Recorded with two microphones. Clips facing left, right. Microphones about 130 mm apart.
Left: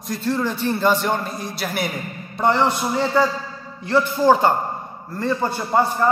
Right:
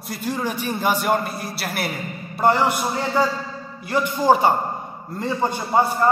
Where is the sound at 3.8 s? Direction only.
15° right (ahead or behind).